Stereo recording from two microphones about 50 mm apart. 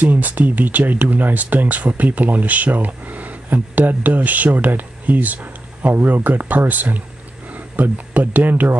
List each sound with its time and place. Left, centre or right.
0.0 s speech: right